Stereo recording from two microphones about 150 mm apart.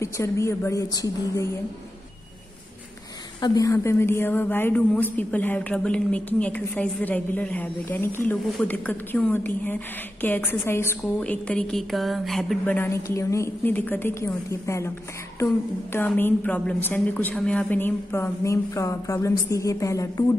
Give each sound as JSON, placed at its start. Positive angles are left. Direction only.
{"t": 0.0, "sound": "a woman's voice", "side_deg": 20}
{"t": 3.3, "sound": "speech", "side_deg": 25}
{"t": 12.6, "sound": "speech", "side_deg": 15}